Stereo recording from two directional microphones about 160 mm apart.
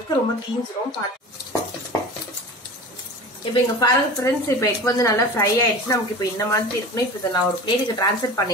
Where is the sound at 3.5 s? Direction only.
20° left (ahead or behind).